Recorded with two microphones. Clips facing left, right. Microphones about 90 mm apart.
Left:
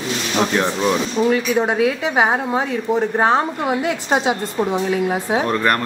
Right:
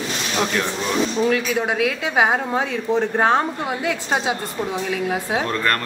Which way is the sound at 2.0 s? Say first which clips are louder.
Left 2 dB; 15° left (ahead or behind).